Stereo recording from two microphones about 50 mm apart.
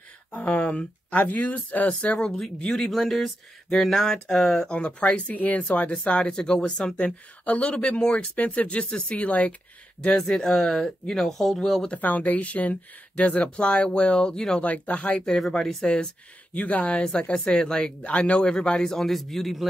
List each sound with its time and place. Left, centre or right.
0.3 s speech: left
2.2 s speech: centre
4.7 s speech: left
10.0 s speech: centre
12.0 s speech: left; by 14.6 s centre
14.6 s speech: left
15.8 s speech: centre
16.5 s speech: left; by 19.7 s centre